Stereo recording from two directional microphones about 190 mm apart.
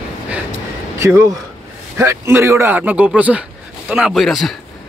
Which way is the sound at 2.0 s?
15° right (ahead or behind).